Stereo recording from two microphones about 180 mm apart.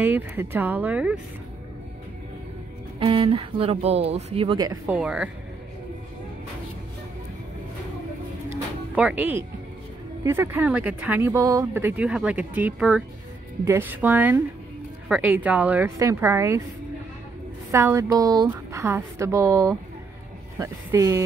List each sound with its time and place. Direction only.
0.0 s speech: 10° right (ahead or behind)
3.0 s speech: 30° right (ahead or behind)
4.9 s speech: 5° right (ahead or behind)
8.9 s speech: 10° right (ahead or behind)
17.6 s speech: 15° right (ahead or behind)